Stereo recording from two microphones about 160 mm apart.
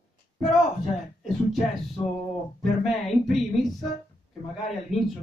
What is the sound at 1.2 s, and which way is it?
Speech, centre (ahead or behind).